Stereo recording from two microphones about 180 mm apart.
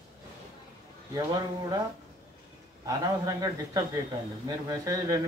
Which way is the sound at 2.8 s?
20° right (ahead or behind).